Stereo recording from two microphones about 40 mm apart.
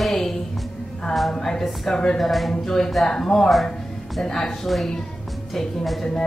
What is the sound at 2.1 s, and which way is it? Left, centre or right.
Speech, centre.